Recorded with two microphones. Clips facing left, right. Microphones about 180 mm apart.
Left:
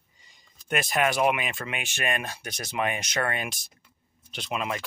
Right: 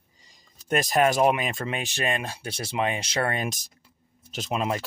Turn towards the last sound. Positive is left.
turn(degrees=-35)  # may be behind; listen again after turning